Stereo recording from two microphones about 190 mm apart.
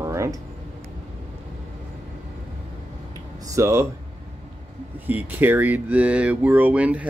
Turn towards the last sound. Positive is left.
turn(degrees=-5)  # may be behind; listen again after turning